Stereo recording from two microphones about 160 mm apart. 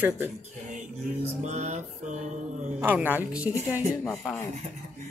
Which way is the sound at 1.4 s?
45° right (ahead or behind).